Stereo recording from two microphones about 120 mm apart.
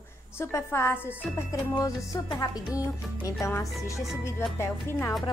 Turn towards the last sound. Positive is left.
turn(degrees=20)  # may be behind; listen again after turning